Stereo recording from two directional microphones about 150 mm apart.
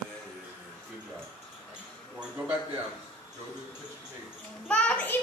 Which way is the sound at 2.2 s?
10° right (ahead or behind).